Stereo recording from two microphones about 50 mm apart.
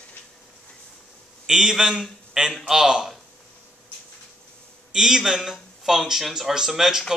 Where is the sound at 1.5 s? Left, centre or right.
Centre.